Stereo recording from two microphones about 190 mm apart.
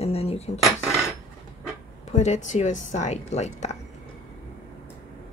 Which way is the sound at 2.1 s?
40° left (ahead or behind).